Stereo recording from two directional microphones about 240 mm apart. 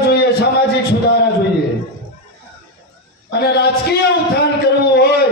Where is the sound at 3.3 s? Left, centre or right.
Left.